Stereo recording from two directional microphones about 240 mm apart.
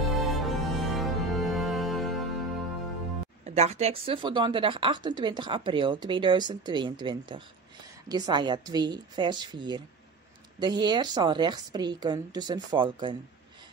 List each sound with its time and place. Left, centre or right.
0.0 s music: centre
3.4 s a woman's voice: right